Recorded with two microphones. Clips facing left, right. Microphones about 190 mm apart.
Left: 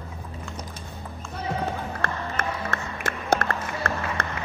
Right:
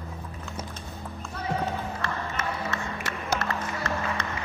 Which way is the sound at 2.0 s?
50° left (ahead or behind).